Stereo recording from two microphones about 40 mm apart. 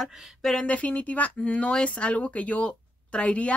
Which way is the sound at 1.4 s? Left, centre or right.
Left.